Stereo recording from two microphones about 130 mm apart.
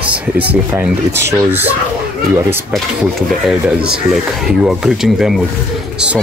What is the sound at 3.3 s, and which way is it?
A child's voice, centre (ahead or behind).